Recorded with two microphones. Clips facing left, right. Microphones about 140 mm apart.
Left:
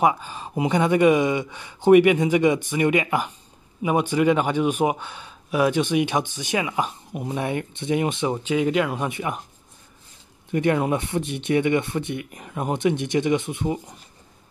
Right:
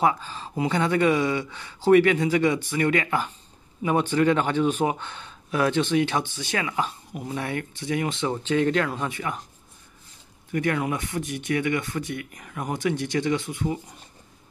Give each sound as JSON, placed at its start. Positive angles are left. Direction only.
{"t": 0.0, "sound": "speech", "side_deg": 15}
{"t": 10.5, "sound": "speech", "side_deg": 25}